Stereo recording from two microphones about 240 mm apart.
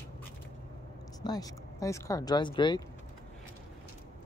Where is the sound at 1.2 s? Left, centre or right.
Centre.